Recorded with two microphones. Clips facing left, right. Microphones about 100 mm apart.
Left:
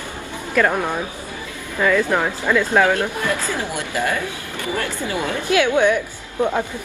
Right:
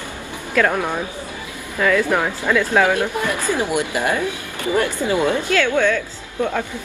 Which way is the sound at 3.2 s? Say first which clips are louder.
Right 2 dB; 15° right (ahead or behind).